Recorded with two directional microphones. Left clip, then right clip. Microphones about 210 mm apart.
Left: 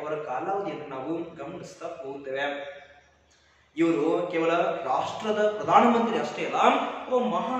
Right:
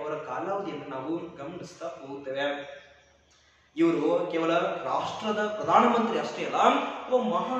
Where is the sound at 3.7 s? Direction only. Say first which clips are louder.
Even; 10° right (ahead or behind).